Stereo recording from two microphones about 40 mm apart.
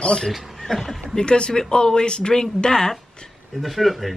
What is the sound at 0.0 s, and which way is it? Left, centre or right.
Speech, left.